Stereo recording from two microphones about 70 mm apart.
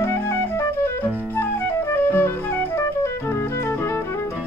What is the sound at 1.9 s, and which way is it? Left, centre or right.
Music, left.